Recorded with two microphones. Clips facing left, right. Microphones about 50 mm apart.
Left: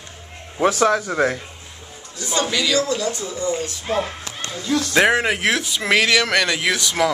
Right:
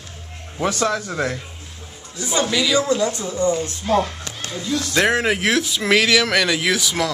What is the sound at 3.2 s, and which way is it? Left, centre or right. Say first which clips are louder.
Speech: right 4 dB; right.